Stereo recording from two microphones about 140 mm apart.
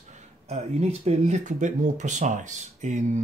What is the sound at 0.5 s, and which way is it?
Speech, 50° right (ahead or behind).